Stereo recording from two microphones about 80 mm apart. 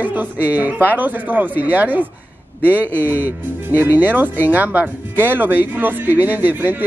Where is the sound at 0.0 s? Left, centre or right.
Right.